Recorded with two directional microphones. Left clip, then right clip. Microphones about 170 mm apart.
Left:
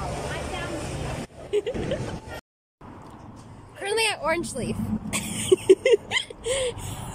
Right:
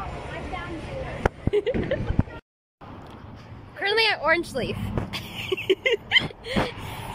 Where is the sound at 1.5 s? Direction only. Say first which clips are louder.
Even; centre (ahead or behind).